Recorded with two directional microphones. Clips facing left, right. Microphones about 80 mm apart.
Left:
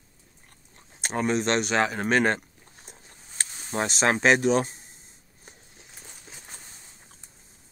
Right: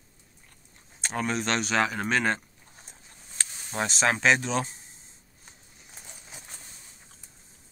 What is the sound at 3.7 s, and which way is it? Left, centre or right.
Speech, left.